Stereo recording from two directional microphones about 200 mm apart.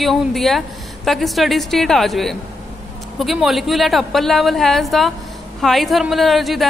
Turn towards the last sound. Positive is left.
turn(degrees=0)  # may be behind; listen again after turning